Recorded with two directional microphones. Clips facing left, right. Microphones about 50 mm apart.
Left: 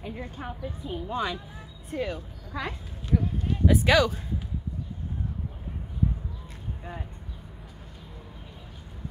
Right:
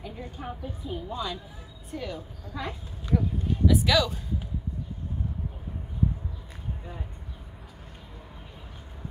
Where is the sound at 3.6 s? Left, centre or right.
Left.